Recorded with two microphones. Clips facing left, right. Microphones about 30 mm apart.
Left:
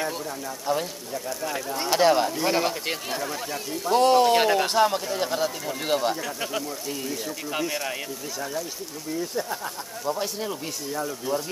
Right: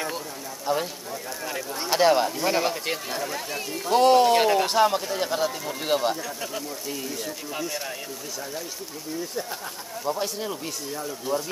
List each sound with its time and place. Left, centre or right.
0.7 s speech: centre
6.2 s speech: centre
6.9 s speech: centre
9.3 s speech: centre